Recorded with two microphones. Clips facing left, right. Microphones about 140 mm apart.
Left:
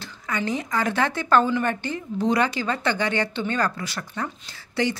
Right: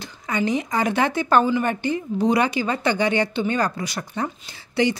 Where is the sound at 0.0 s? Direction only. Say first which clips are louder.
Right 4 dB; 15° right (ahead or behind).